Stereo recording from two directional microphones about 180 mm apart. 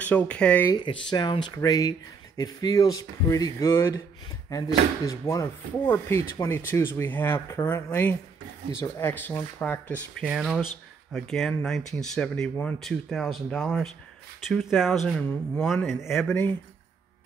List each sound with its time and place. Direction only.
0.0 s speech: 10° left (ahead or behind)
0.7 s speech: 25° left (ahead or behind); by 10.0 s 10° left (ahead or behind)
10.2 s speech: centre (ahead or behind)